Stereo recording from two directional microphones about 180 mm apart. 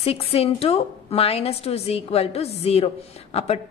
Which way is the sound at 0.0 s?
35° left (ahead or behind).